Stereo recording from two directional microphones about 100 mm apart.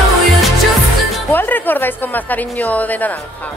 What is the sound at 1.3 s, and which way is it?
A woman's voice, 20° left (ahead or behind).